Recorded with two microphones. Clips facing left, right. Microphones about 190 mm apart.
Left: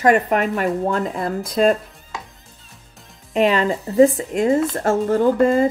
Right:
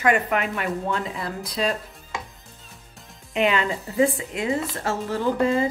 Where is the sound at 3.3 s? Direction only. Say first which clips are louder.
Left 5 dB; 40° left (ahead or behind).